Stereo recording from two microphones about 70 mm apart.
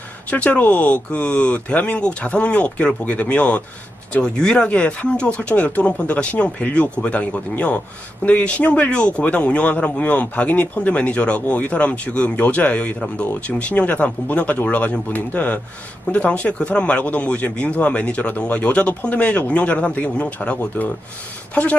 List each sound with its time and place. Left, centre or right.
0.3 s speech: left